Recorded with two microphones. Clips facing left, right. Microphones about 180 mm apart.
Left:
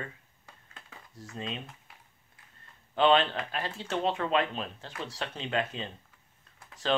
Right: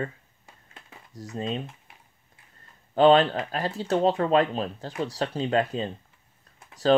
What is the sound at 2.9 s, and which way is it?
Speech, 40° right (ahead or behind).